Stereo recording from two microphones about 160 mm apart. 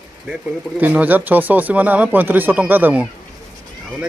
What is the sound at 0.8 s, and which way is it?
Speech, 10° right (ahead or behind).